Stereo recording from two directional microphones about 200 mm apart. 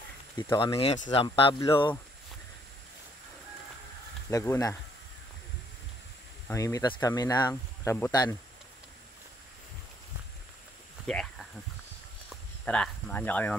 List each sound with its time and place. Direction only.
0.4 s speech: 20° left (ahead or behind)
4.3 s speech: 15° left (ahead or behind)
6.4 s speech: 15° left (ahead or behind)
11.1 s a sound: 5° left (ahead or behind)